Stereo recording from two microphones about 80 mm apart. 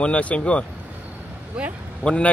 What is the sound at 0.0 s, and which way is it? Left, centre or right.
Speech, centre.